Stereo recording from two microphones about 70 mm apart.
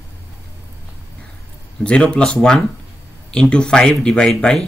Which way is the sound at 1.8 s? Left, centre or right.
Centre.